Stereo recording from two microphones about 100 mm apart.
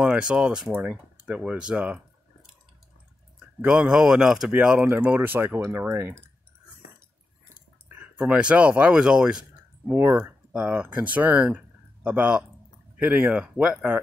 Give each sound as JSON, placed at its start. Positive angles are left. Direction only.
{"t": 0.0, "sound": "speech", "side_deg": -10}
{"t": 3.6, "sound": "speech", "side_deg": -10}
{"t": 7.9, "sound": "speech", "side_deg": -15}
{"t": 9.8, "sound": "speech", "side_deg": -25}
{"t": 10.5, "sound": "speech", "side_deg": -15}